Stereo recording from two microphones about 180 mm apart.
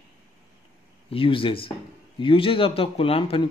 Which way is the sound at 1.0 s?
30° left (ahead or behind).